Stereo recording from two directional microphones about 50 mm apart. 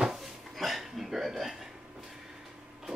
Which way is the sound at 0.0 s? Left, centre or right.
Centre.